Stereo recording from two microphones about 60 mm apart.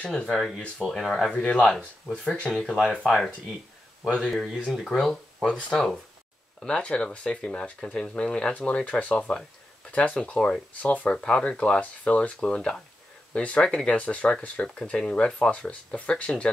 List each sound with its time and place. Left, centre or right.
0.0 s speech: centre
1.3 s speech: centre
2.5 s speech: centre
4.1 s speech: centre
6.6 s speech: centre